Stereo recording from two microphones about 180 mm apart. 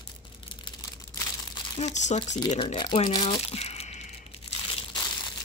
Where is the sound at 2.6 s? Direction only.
25° left (ahead or behind).